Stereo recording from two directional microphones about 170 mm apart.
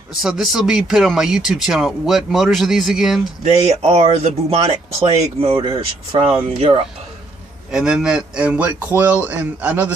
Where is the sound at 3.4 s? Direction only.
40° right (ahead or behind).